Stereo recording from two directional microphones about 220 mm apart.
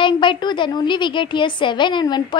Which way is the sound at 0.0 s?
20° left (ahead or behind).